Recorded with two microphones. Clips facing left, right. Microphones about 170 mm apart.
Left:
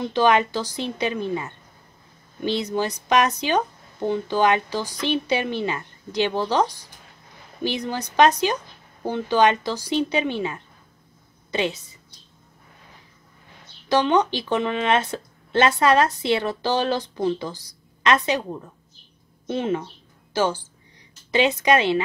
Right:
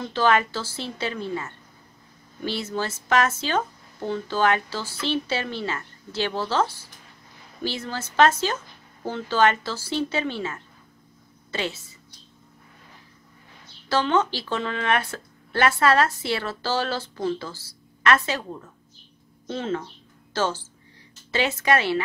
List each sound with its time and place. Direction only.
0.0 s speech: 15° left (ahead or behind)
13.8 s speech: 15° left (ahead or behind)